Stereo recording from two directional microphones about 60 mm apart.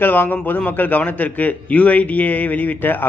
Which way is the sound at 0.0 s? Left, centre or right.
Left.